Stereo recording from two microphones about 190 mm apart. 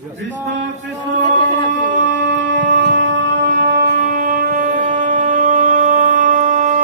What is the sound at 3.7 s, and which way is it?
Shofar, 50° right (ahead or behind).